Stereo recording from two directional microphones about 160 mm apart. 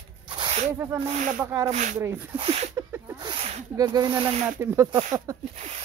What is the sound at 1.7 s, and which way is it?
Speech, 50° right (ahead or behind).